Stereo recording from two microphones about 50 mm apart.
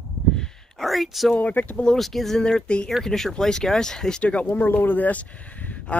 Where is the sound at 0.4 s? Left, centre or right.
Centre.